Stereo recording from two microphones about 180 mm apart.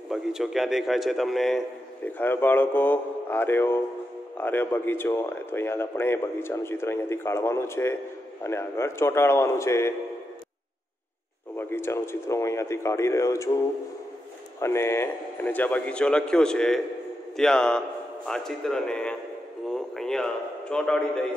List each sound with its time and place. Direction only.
0.1 s a man's voice: centre (ahead or behind)
2.1 s speech: 10° left (ahead or behind)
11.5 s speech: 15° left (ahead or behind)
14.6 s a man's voice: 15° left (ahead or behind)
19.7 s radio: 5° left (ahead or behind)
20.7 s a man's voice: 5° left (ahead or behind)